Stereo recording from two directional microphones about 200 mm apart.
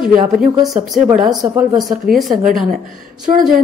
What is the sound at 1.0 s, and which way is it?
Speech, 15° right (ahead or behind).